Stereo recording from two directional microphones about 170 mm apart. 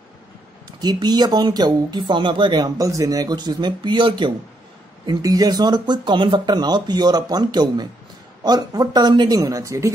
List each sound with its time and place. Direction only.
0.7 s speech: 25° right (ahead or behind)